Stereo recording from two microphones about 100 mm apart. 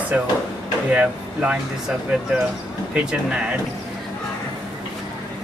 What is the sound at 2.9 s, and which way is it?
Speech, 10° right (ahead or behind).